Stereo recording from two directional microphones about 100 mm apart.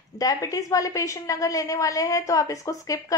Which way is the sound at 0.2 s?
35° left (ahead or behind).